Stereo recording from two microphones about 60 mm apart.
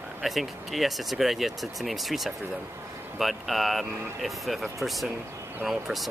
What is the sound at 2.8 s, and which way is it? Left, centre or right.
Vehicle, right.